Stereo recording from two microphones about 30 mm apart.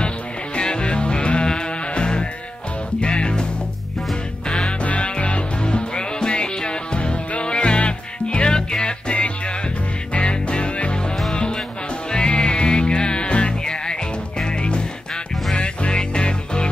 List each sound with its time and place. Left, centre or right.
0.6 s music: left
4.5 s music: left
13.3 s music: left